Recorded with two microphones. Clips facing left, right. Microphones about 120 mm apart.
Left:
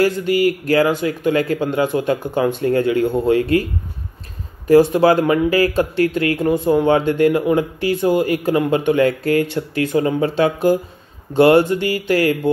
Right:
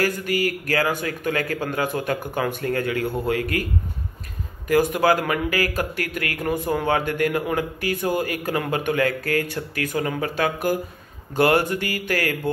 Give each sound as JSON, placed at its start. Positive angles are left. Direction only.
{"t": 0.0, "sound": "speech", "side_deg": 25}
{"t": 4.6, "sound": "speech", "side_deg": 30}